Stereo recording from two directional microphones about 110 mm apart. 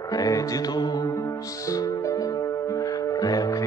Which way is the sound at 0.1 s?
35° left (ahead or behind).